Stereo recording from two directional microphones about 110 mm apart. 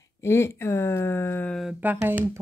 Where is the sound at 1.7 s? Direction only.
15° right (ahead or behind).